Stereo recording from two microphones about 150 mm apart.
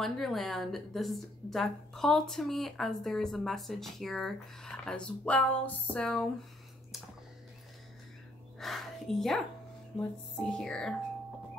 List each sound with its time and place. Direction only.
0.0 s a woman's voice: centre (ahead or behind)
8.5 s a woman's voice: centre (ahead or behind)